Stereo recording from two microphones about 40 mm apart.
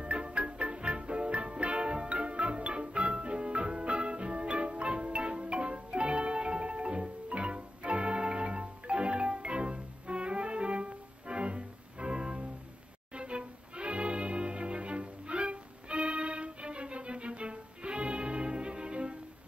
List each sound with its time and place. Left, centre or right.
0.0 s music: right